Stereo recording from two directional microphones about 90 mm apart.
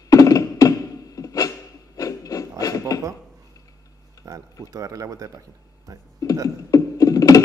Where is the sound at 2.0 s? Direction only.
40° left (ahead or behind).